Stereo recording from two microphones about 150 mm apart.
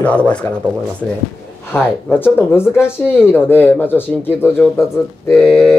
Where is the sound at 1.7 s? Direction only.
15° left (ahead or behind).